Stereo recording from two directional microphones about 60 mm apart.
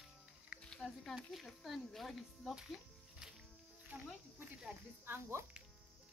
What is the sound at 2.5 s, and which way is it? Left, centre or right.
Music, centre.